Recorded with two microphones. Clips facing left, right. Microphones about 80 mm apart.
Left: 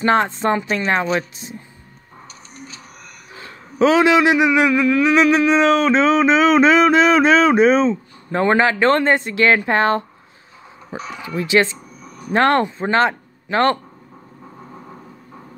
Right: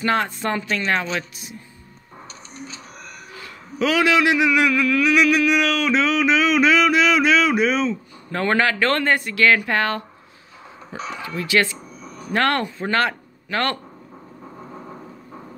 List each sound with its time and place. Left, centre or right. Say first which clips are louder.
0.0 s a man's voice: left 5 dB; left
3.3 s a man's voice: left 7 dB; left
11.1 s a man's voice: left 4 dB; left
12.0 s a sound: right 1 dB; centre
12.3 s a man's voice: left 5 dB; left
14.4 s vehicle: right 1 dB; centre